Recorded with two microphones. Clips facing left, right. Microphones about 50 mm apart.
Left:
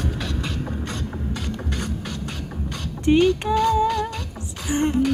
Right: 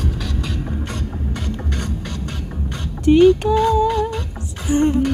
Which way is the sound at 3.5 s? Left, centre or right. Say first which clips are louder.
Right 3 dB; right.